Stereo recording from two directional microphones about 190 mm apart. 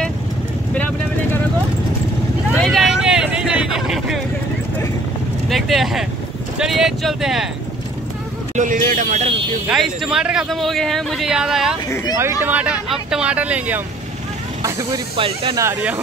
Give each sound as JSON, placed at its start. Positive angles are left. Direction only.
{"t": 0.7, "sound": "vehicle", "side_deg": 10}
{"t": 2.5, "sound": "vehicle", "side_deg": 5}
{"t": 5.5, "sound": "speech", "side_deg": 0}
{"t": 8.5, "sound": "speech", "side_deg": -45}
{"t": 9.7, "sound": "speech", "side_deg": -5}
{"t": 11.9, "sound": "speech", "side_deg": 15}
{"t": 12.2, "sound": "speech", "side_deg": -15}
{"t": 14.6, "sound": "speech", "side_deg": -20}